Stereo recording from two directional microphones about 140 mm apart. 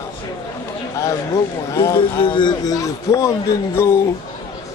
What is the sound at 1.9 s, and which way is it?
Speech, 35° left (ahead or behind).